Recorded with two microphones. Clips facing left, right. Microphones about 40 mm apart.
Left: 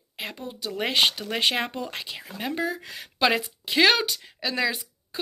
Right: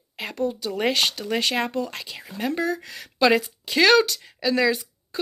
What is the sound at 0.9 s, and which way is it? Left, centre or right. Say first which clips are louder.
Speech: even; centre.